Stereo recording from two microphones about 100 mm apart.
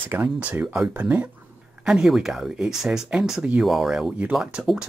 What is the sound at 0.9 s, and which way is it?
Speech, 15° right (ahead or behind).